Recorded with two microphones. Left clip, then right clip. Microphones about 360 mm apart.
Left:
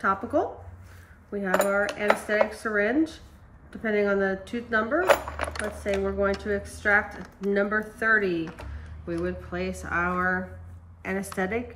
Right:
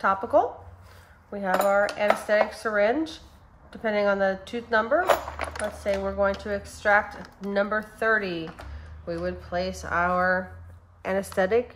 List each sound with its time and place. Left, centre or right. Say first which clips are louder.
0.0 s dishes: right 3 dB; centre